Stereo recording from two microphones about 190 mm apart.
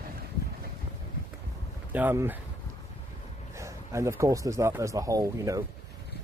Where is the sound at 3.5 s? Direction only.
15° right (ahead or behind).